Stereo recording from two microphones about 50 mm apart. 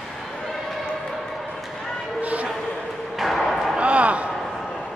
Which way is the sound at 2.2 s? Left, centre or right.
Right.